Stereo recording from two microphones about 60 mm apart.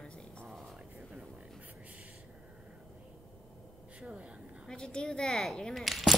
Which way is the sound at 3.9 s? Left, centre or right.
Centre.